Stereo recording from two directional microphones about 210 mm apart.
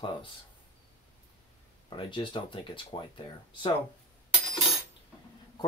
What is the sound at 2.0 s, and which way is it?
Speech, 25° left (ahead or behind).